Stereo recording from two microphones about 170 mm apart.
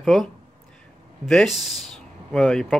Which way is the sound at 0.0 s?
Centre (ahead or behind).